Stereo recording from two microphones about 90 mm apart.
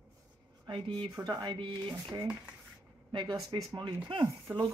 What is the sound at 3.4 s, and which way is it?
Speech, 45° right (ahead or behind).